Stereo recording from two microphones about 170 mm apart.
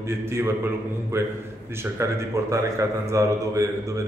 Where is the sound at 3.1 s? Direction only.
20° right (ahead or behind).